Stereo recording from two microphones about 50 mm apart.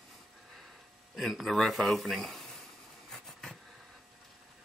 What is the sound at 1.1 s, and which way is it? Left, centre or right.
A man's voice, centre.